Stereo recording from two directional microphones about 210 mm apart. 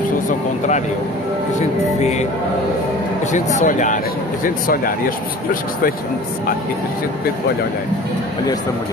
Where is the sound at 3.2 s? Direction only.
35° left (ahead or behind).